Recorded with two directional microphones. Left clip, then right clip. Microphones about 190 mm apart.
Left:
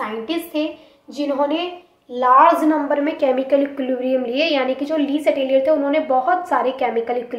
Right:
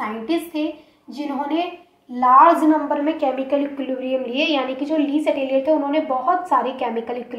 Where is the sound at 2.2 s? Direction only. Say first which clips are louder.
Even; 40° left (ahead or behind).